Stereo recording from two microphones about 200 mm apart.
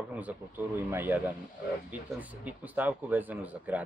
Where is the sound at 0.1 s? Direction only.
5° right (ahead or behind).